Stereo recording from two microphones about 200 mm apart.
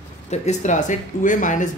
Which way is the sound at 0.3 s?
35° left (ahead or behind).